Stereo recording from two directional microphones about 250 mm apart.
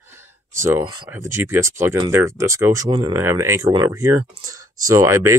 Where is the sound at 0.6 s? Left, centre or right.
Centre.